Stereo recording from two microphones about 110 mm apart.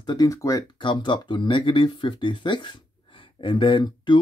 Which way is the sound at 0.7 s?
45° left (ahead or behind).